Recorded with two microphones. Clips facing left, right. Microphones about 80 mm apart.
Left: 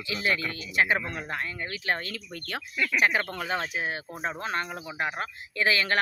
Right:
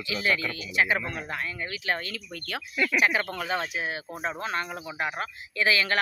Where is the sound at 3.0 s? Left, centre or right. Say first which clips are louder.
Even; left.